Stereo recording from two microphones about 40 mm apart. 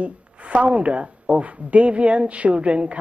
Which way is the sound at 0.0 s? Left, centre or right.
Right.